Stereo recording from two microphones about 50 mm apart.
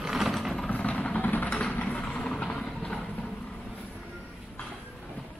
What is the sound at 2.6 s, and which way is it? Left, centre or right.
Clip-clop, centre.